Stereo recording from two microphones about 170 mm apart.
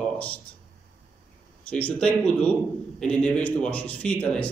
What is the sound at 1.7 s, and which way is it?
A man's voice, 5° left (ahead or behind).